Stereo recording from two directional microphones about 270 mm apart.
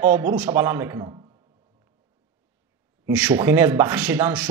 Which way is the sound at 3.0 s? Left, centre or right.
Centre.